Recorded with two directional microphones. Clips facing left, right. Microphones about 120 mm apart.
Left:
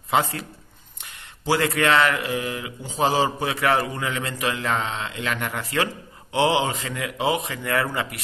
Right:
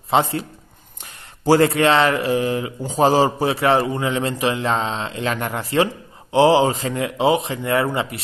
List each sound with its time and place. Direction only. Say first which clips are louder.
0.1 s speech: right 4 dB; 25° right (ahead or behind)